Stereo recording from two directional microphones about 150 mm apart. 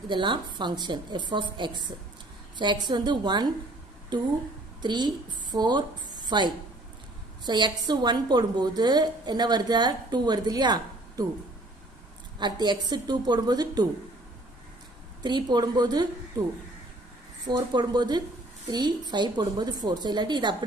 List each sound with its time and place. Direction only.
0.1 s a woman's voice: 30° right (ahead or behind)
12.4 s a woman's voice: 30° right (ahead or behind)
15.2 s a woman's voice: 30° right (ahead or behind)
17.5 s a woman's voice: 30° right (ahead or behind)